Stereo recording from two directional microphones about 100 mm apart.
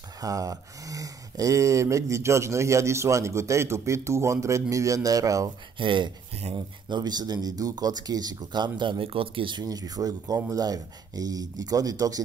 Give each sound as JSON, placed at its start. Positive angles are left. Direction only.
{"t": 0.2, "sound": "speech", "side_deg": -35}
{"t": 5.8, "sound": "speech", "side_deg": -60}
{"t": 6.5, "sound": "speech", "side_deg": -45}
{"t": 9.7, "sound": "speech", "side_deg": -40}